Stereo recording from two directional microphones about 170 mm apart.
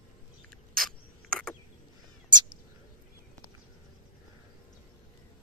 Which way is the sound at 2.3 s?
25° right (ahead or behind).